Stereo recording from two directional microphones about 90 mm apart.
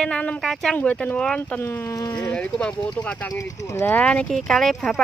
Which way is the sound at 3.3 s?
35° left (ahead or behind).